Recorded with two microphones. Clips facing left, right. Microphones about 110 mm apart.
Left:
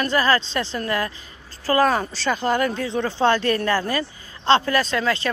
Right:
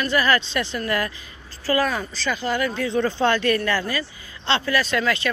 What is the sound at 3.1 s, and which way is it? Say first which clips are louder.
Speech: left 3 dB; 30° left (ahead or behind).